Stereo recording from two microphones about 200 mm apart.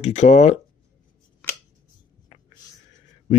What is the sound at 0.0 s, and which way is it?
Speech, 35° left (ahead or behind).